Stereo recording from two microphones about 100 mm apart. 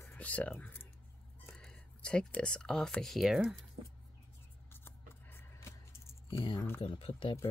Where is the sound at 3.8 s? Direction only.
70° right (ahead or behind).